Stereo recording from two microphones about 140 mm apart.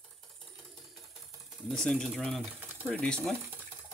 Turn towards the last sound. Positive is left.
turn(degrees=5)  # may be behind; listen again after turning